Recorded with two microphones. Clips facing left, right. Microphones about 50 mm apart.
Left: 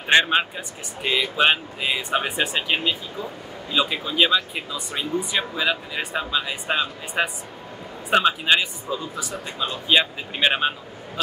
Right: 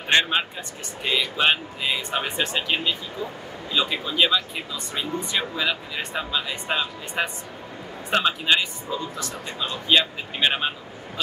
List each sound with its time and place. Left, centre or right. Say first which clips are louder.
0.1 s a man's voice: left 3 dB; centre